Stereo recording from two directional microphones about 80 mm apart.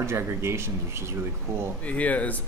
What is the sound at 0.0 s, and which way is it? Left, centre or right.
Speech, right.